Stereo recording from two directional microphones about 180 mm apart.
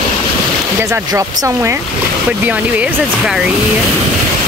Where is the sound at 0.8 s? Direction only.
15° right (ahead or behind).